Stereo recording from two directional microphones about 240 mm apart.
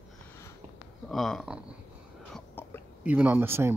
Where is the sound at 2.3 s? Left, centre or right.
Centre.